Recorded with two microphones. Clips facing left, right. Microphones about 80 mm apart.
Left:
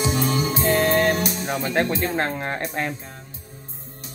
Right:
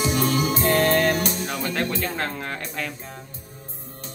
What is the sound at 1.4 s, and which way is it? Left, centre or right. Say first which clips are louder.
Speech: left 3 dB; left.